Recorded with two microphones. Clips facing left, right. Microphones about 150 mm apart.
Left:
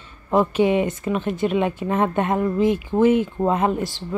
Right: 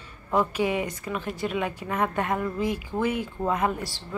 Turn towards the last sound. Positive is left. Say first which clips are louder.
# left 5 dB
turn(degrees=20)  # may be behind; listen again after turning